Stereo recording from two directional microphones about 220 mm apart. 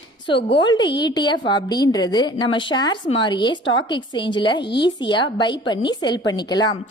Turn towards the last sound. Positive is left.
turn(degrees=20)  # may be behind; listen again after turning